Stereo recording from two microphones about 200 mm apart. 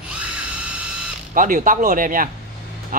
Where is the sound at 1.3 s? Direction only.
40° right (ahead or behind).